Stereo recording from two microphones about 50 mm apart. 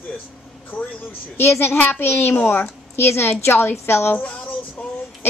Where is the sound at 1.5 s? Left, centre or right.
Left.